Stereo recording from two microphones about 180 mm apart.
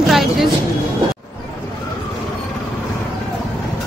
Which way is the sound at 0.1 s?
Centre (ahead or behind).